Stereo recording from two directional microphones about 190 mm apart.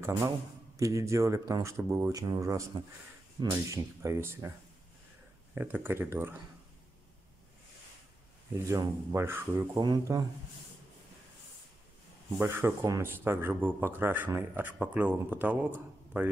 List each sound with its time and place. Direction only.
0.0 s speech: 15° right (ahead or behind)
5.5 s speech: 10° right (ahead or behind)
8.5 s speech: 15° right (ahead or behind)
12.4 s speech: 15° right (ahead or behind)